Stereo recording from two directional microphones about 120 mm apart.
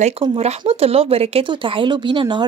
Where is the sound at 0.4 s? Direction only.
60° right (ahead or behind).